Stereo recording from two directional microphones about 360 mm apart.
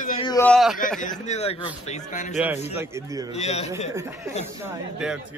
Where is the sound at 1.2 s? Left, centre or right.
Centre.